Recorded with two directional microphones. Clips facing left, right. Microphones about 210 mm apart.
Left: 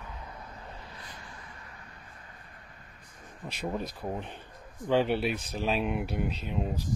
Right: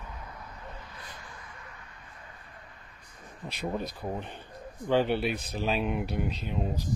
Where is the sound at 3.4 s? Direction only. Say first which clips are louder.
Right 1 dB; centre (ahead or behind).